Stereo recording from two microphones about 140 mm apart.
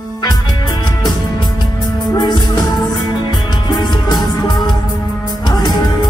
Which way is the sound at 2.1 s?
30° left (ahead or behind).